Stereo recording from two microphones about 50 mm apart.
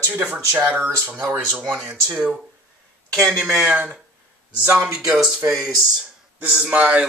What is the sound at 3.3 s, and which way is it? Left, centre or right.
Speech, centre.